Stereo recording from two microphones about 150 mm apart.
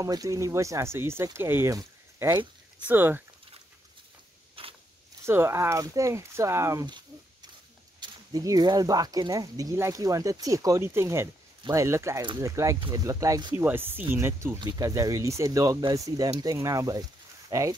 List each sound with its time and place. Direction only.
0.0 s speech: 20° right (ahead or behind)
4.6 s mechanisms: 40° right (ahead or behind)
5.2 s speech: 15° right (ahead or behind)
8.0 s speech: 25° right (ahead or behind)
13.6 s speech: 15° right (ahead or behind)